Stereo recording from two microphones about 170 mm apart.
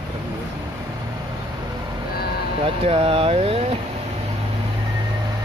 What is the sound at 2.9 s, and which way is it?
Speech, 30° right (ahead or behind).